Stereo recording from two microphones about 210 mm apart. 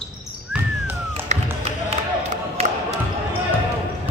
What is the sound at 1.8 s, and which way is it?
Basketball bounce, 30° right (ahead or behind).